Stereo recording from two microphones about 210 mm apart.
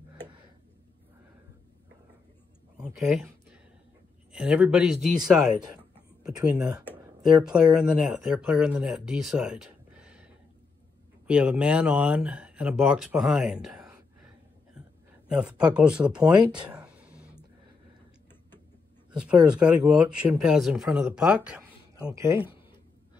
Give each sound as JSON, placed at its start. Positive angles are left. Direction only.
{"t": 2.8, "sound": "a sound", "side_deg": -5}
{"t": 4.3, "sound": "speech", "side_deg": -5}
{"t": 6.5, "sound": "speech", "side_deg": -20}
{"t": 7.4, "sound": "speech", "side_deg": -5}
{"t": 11.2, "sound": "speech", "side_deg": -5}
{"t": 15.2, "sound": "speech", "side_deg": -5}
{"t": 19.1, "sound": "speech", "side_deg": -5}